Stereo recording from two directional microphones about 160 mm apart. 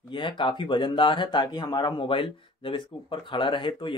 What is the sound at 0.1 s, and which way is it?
Speech, 30° left (ahead or behind).